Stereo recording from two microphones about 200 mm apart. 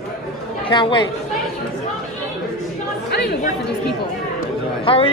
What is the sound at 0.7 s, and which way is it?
Speech, 25° left (ahead or behind).